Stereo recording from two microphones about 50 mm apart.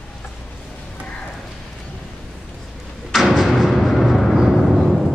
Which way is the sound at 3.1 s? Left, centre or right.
Centre.